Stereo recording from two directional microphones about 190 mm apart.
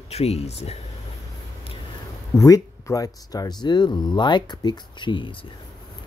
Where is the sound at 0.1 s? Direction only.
35° left (ahead or behind).